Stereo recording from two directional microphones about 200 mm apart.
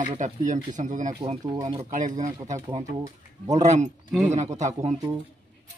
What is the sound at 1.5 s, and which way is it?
Speech, 20° right (ahead or behind).